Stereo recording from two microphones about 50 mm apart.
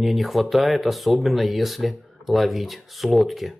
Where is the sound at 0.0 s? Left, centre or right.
Centre.